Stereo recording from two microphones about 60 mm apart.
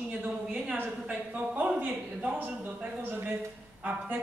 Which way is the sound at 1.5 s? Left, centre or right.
Right.